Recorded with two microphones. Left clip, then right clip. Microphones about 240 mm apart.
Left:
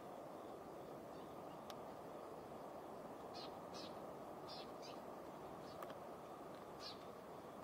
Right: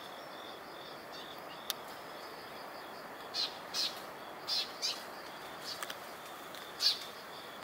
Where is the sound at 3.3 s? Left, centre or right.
Centre.